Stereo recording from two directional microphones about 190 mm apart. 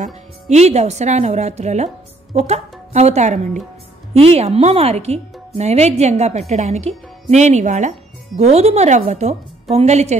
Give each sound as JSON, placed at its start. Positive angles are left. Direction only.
{"t": 0.0, "sound": "speech", "side_deg": -35}